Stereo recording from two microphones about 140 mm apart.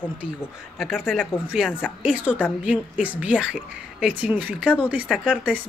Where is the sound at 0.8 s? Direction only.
Centre (ahead or behind).